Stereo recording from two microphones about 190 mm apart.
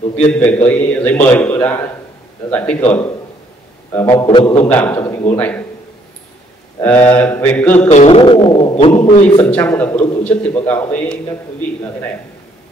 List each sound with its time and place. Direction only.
0.3 s a man's voice: 10° left (ahead or behind)
3.9 s a man's voice: 15° left (ahead or behind)
4.3 s a man's voice: 25° left (ahead or behind)
4.6 s a man's voice: 10° left (ahead or behind)
6.8 s a man's voice: 10° left (ahead or behind)
7.9 s a man's voice: 35° left (ahead or behind)
9.4 s a man's voice: 10° left (ahead or behind)